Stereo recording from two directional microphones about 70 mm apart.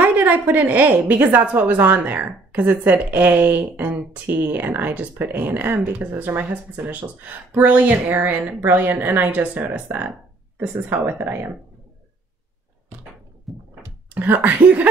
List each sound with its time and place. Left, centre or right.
0.0 s a woman's voice: right
13.5 s a sound: centre
14.1 s a woman's voice: right